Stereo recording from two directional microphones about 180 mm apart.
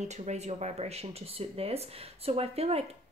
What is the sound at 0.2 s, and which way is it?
Speech, 40° right (ahead or behind).